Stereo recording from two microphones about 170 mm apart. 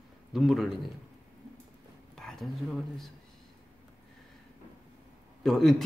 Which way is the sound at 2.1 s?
Centre (ahead or behind).